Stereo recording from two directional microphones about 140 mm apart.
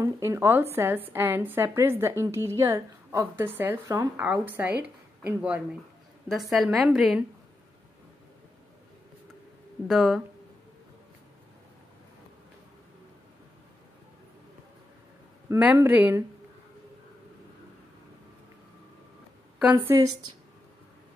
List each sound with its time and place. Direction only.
0.0 s a woman's voice: 20° right (ahead or behind); by 7.2 s centre (ahead or behind)
9.8 s a woman's voice: centre (ahead or behind)
15.4 s a woman's voice: 15° right (ahead or behind)